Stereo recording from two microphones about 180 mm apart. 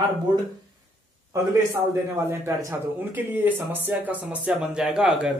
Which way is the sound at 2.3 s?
15° right (ahead or behind).